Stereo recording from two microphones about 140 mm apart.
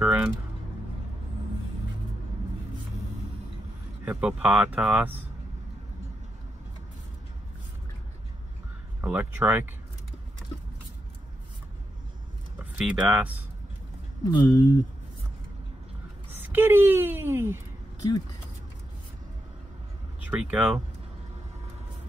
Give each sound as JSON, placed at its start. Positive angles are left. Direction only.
{"t": 0.0, "sound": "a sound", "side_deg": -10}
{"t": 4.0, "sound": "speech", "side_deg": -10}
{"t": 9.0, "sound": "speech", "side_deg": -10}
{"t": 12.5, "sound": "speech", "side_deg": -10}
{"t": 14.2, "sound": "speech", "side_deg": 25}
{"t": 16.5, "sound": "speech", "side_deg": -15}
{"t": 20.2, "sound": "speech", "side_deg": -10}